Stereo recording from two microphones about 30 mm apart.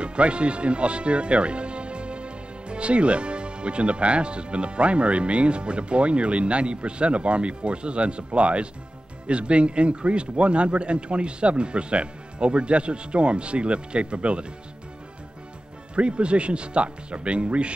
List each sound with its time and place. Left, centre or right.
0.0 s speech: right
15.9 s speech: right